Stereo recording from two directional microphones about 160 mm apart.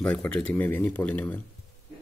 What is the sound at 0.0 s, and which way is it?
Speech, 5° left (ahead or behind).